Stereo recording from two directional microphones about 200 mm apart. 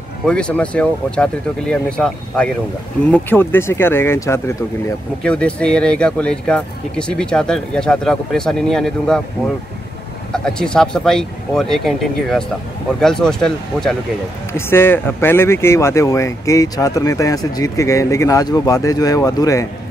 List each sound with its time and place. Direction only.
0.2 s speech: 5° left (ahead or behind)
10.3 s speech: 5° left (ahead or behind)